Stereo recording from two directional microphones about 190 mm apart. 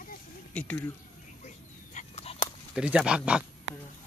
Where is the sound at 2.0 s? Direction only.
35° left (ahead or behind).